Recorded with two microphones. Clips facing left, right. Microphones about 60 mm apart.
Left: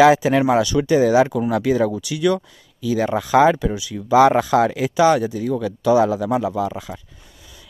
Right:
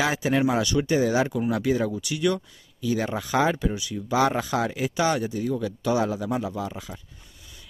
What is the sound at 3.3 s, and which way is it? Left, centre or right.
Speech, left.